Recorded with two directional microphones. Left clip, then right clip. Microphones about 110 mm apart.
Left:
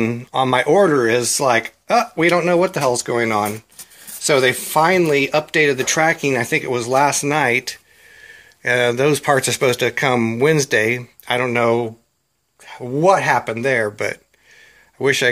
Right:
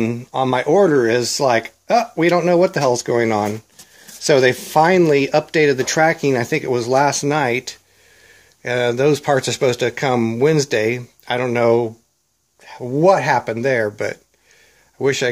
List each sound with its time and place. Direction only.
0.0 s speech: 15° right (ahead or behind); by 2.9 s 45° right (ahead or behind)
3.0 s speech: 60° right (ahead or behind); by 7.3 s 45° right (ahead or behind)
7.3 s speech: 30° right (ahead or behind)
13.0 s a man's voice: 40° right (ahead or behind); by 15.2 s 20° right (ahead or behind)